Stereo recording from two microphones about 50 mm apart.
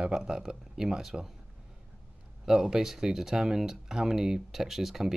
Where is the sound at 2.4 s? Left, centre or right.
Centre.